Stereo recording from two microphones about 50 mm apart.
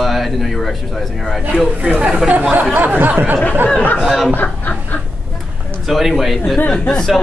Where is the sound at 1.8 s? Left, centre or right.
Centre.